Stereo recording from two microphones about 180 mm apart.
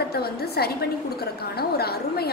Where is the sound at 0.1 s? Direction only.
60° left (ahead or behind).